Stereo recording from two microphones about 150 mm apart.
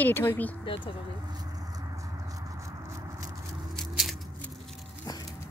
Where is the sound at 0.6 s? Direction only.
35° left (ahead or behind).